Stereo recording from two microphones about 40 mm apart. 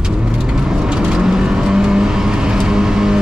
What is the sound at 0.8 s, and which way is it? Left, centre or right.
Vehicle, right.